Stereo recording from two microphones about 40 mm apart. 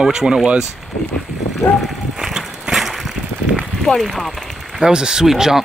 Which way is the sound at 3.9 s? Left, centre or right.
Left.